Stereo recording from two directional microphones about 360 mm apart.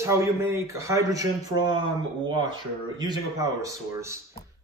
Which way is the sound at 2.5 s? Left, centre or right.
Centre.